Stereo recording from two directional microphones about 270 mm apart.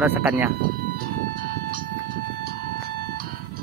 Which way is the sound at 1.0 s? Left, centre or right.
Right.